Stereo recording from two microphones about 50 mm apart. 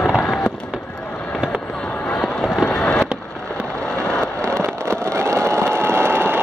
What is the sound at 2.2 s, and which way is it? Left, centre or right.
Run, centre.